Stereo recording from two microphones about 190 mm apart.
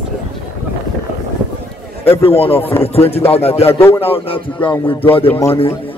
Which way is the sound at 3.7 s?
10° left (ahead or behind).